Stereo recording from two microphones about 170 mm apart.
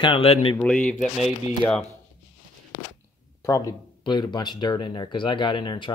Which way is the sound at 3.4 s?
20° left (ahead or behind).